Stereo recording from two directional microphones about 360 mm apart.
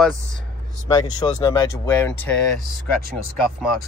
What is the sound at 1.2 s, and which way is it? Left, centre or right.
Speech, centre.